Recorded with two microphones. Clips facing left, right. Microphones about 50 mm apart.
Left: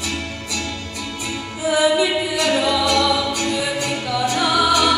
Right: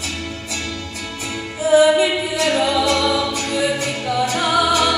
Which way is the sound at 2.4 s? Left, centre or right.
Right.